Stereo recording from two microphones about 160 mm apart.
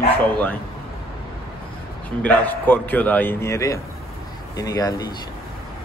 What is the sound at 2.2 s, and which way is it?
A man's voice, 10° left (ahead or behind).